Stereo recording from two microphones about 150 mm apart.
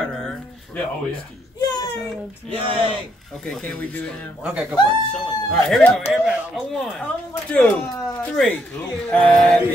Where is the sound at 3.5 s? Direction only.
10° left (ahead or behind).